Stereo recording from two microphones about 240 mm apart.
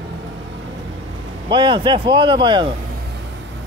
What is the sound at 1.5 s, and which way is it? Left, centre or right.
A man's voice, centre.